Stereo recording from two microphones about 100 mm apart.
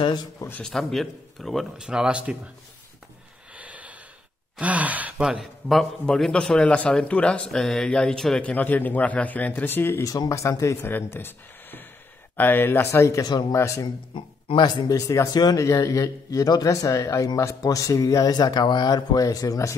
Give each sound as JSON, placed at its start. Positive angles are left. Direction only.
{"t": 0.0, "sound": "a man's voice", "side_deg": 45}
{"t": 0.7, "sound": "speech", "side_deg": 5}
{"t": 3.5, "sound": "a sound", "side_deg": -15}
{"t": 4.6, "sound": "speech", "side_deg": -15}
{"t": 10.0, "sound": "speech", "side_deg": 35}
{"t": 10.9, "sound": "speech", "side_deg": 20}
{"t": 14.1, "sound": "speech", "side_deg": 55}
{"t": 14.9, "sound": "speech", "side_deg": 35}